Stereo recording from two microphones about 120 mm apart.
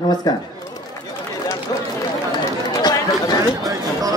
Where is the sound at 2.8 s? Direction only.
30° left (ahead or behind).